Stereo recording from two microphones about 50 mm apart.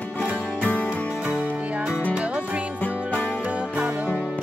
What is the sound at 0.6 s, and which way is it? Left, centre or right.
Music, left.